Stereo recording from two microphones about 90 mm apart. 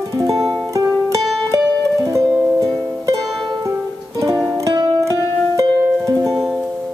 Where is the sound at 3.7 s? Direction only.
35° right (ahead or behind).